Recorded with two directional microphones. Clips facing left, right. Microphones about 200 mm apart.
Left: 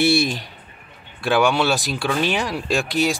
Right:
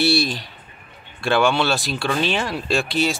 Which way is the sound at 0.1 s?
50° left (ahead or behind).